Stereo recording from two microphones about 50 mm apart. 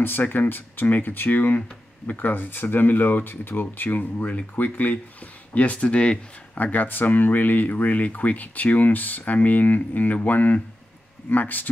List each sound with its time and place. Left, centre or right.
0.0 s speech: left
6.5 s speech: left